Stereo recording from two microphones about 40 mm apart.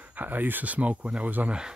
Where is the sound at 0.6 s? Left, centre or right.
Right.